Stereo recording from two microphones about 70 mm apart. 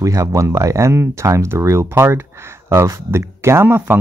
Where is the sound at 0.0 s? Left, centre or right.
Right.